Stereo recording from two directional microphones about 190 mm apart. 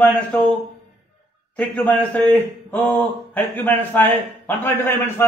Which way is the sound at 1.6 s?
10° left (ahead or behind).